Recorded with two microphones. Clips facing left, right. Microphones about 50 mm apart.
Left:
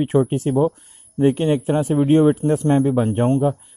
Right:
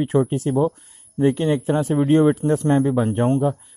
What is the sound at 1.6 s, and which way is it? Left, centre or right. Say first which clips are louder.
Speech: left 1 dB; centre.